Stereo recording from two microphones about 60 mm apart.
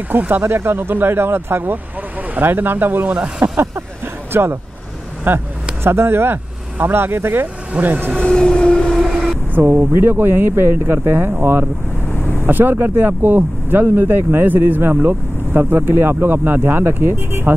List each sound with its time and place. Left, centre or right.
0.3 s speech: right
3.1 s speech: centre
4.3 s speech: right
8.2 s vehicle: centre
8.9 s train: centre
9.5 s speech: right